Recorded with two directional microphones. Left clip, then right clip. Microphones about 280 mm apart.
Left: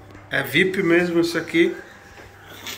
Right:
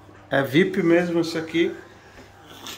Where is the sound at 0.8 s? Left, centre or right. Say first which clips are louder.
Left 1 dB; centre.